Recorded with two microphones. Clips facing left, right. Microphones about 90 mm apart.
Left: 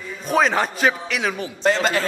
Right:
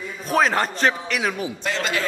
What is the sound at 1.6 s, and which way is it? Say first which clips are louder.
Speech: left 7 dB; 40° left (ahead or behind).